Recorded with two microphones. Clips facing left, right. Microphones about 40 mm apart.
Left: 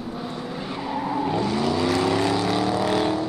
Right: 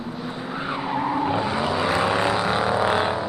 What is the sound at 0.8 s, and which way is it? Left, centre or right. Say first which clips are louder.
Vehicle: right 1 dB; right.